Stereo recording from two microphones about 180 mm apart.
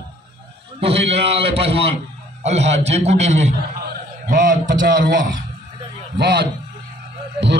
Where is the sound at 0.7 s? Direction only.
35° right (ahead or behind); by 5.2 s 50° right (ahead or behind).